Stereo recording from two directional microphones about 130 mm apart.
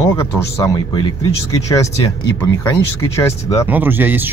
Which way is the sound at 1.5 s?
25° left (ahead or behind).